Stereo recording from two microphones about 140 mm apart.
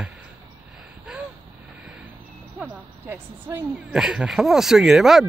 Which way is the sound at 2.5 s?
15° right (ahead or behind).